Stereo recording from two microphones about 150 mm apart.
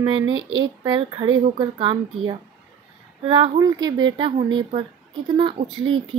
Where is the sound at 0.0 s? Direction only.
30° right (ahead or behind).